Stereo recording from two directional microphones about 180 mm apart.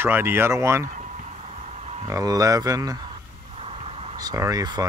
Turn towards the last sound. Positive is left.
turn(degrees=-20)  # may be behind; listen again after turning